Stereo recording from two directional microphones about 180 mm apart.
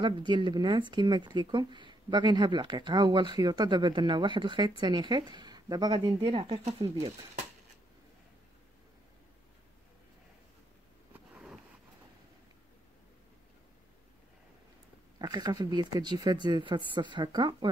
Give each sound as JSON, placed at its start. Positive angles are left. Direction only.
{"t": 0.0, "sound": "speech", "side_deg": -25}
{"t": 11.1, "sound": "a sound", "side_deg": -5}
{"t": 15.1, "sound": "speech", "side_deg": -20}